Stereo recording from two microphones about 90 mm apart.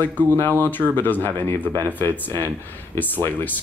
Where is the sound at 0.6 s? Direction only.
20° left (ahead or behind).